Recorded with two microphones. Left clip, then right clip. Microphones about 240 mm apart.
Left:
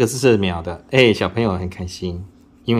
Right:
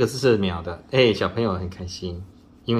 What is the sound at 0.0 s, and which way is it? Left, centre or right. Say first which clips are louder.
Speech: left 4 dB; left.